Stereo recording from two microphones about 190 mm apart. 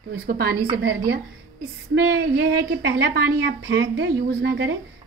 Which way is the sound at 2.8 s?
60° right (ahead or behind).